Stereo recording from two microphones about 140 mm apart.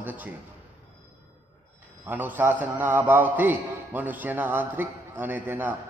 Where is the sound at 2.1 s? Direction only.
15° right (ahead or behind).